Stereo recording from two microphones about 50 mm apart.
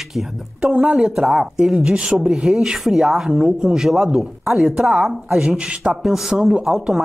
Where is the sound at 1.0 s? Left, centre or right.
Centre.